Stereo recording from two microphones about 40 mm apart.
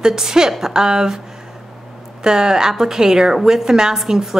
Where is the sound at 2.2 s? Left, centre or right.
Centre.